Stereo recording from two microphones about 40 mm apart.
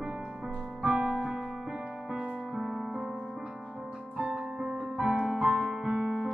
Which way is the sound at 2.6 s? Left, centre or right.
Centre.